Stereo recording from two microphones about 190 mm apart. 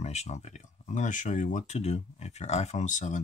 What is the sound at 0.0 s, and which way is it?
Speech, 35° left (ahead or behind).